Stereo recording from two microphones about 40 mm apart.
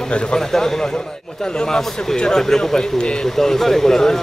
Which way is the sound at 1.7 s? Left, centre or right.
Centre.